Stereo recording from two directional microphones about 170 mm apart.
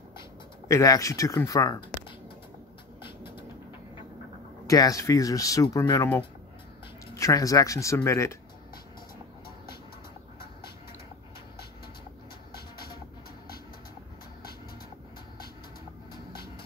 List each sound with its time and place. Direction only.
0.7 s speech: 20° left (ahead or behind)
4.6 s speech: 20° left (ahead or behind)
12.5 s music: 65° left (ahead or behind)